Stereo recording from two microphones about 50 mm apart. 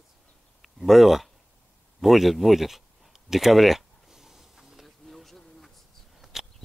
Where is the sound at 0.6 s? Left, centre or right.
Centre.